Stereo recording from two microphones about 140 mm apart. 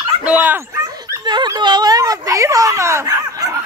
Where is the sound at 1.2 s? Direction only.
30° right (ahead or behind).